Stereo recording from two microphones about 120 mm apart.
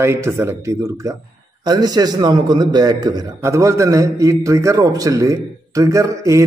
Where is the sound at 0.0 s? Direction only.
20° right (ahead or behind).